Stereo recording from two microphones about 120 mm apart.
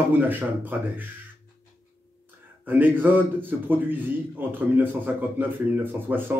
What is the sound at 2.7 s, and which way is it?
A man's voice, 15° right (ahead or behind).